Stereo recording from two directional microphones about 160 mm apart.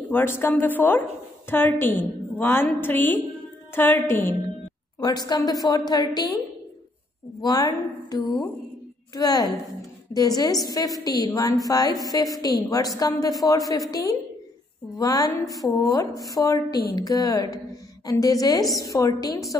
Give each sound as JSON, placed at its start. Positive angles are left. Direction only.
{"t": 0.1, "sound": "a woman's voice", "side_deg": 15}
{"t": 5.0, "sound": "a woman's voice", "side_deg": 25}
{"t": 7.4, "sound": "a woman's voice", "side_deg": 25}